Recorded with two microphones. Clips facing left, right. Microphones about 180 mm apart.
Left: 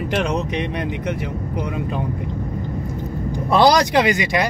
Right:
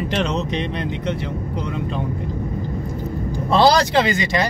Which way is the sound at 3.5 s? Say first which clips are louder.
Left 1 dB; 15° left (ahead or behind).